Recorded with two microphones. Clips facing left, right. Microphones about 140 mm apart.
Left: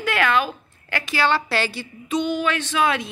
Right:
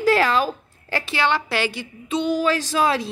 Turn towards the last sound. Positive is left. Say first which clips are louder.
# right 1 dB
turn(degrees=-35)  # may be behind; listen again after turning